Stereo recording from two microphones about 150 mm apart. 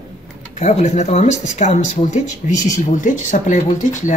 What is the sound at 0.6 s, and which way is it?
A man's voice, 50° left (ahead or behind).